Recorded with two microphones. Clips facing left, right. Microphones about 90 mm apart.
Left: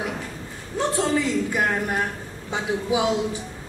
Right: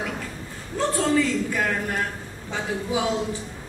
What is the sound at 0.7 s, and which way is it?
A woman's voice, 20° left (ahead or behind).